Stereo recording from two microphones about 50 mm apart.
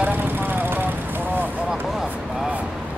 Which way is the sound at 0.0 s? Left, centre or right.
Right.